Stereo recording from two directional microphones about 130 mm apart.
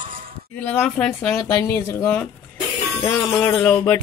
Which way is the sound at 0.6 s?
15° left (ahead or behind).